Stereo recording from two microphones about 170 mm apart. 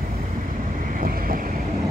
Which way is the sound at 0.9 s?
55° right (ahead or behind).